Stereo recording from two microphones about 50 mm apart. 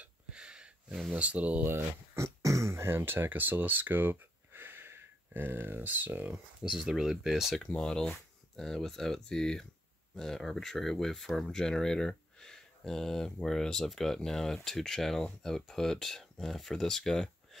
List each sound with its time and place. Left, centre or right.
0.3 s a sound: centre
1.1 s speech: right
1.6 s speech: right
2.1 s speech: right
6.6 s speech: centre
7.6 s speech: centre